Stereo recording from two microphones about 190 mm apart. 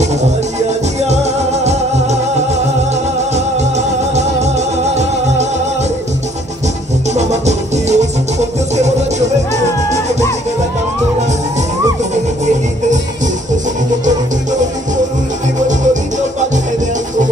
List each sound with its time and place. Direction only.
0.9 s music: 35° right (ahead or behind)
7.2 s music: 35° right (ahead or behind)